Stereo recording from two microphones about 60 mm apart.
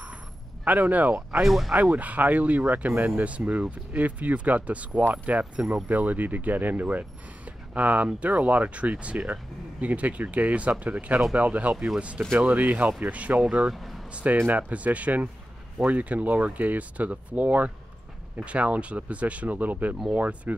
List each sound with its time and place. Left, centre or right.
0.7 s speech: right
1.4 s speech: centre
1.8 s speech: right
5.9 s speech: right
13.7 s a sound: centre
14.1 s speech: right